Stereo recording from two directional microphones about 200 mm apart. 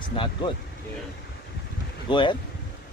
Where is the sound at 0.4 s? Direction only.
25° left (ahead or behind).